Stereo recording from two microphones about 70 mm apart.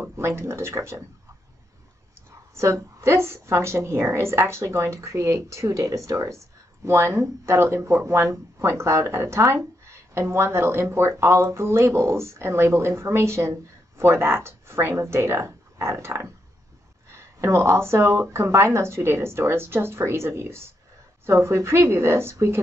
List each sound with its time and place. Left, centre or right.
0.0 s speech: right
2.5 s a woman's voice: right